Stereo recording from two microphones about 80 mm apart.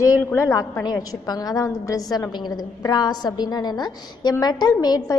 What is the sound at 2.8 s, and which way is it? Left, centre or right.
A woman's voice, left.